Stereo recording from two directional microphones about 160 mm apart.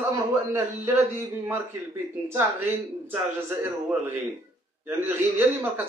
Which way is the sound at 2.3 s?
10° right (ahead or behind).